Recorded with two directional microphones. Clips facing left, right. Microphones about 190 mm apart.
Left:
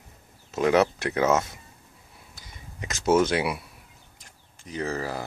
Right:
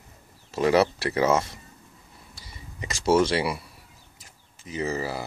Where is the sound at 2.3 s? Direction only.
Centre (ahead or behind).